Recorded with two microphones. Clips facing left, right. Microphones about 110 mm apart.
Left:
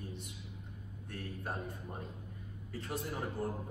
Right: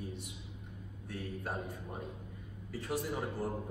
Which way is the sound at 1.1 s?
10° right (ahead or behind).